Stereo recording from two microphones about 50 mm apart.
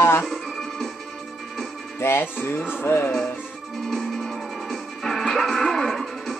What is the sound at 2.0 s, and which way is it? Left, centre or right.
Speech, left.